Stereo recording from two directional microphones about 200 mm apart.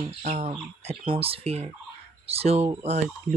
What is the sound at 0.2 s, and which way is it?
Speech, 35° right (ahead or behind).